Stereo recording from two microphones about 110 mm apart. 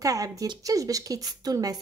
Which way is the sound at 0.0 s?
30° right (ahead or behind).